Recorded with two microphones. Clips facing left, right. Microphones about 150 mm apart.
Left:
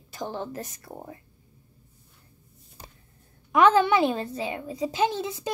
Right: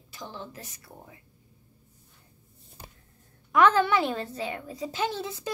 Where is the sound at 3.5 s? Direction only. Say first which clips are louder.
Left 2 dB; 20° left (ahead or behind).